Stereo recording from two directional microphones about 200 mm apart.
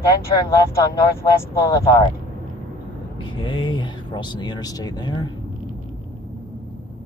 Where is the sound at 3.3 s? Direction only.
25° left (ahead or behind).